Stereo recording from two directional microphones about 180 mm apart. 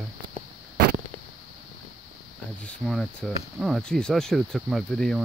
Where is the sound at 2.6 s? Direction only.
Centre (ahead or behind).